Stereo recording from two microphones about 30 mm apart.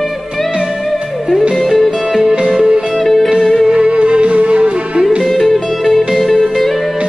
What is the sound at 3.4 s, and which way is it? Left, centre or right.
Music, centre.